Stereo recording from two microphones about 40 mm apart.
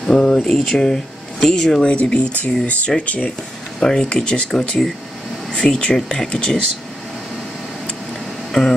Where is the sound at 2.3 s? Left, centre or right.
Left.